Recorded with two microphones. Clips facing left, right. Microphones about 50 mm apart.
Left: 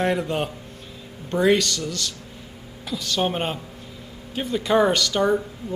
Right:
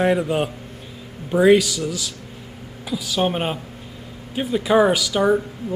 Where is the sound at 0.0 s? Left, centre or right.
Centre.